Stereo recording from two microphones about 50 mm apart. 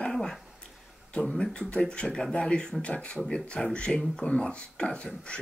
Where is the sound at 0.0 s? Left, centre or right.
Centre.